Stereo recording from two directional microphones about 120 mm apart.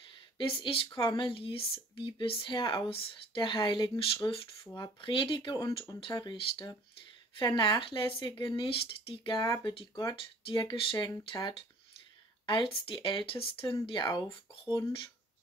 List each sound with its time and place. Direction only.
0.6 s speech: 50° left (ahead or behind)
4.7 s speech: 40° left (ahead or behind)
13.8 s speech: 35° left (ahead or behind)